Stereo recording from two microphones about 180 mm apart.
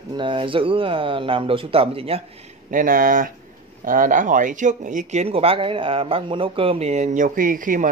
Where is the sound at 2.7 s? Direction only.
50° right (ahead or behind).